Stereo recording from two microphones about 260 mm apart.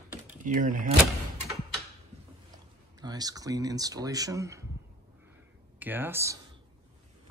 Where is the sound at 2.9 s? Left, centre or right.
Centre.